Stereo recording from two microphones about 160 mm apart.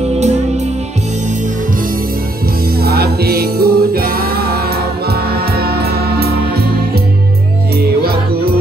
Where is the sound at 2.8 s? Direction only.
75° right (ahead or behind).